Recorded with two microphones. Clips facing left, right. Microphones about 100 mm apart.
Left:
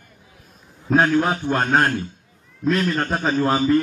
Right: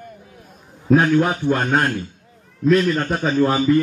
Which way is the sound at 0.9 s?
30° left (ahead or behind).